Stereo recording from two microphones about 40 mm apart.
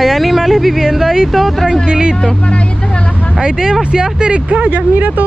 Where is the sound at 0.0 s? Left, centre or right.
Centre.